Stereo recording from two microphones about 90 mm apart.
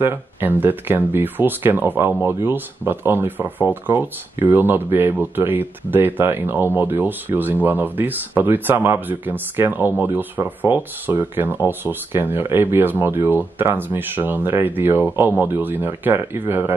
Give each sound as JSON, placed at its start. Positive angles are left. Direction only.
{"t": 0.0, "sound": "speech", "side_deg": -20}